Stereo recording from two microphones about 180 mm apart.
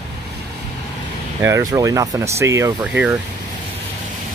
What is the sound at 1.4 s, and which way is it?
Speech, 20° right (ahead or behind).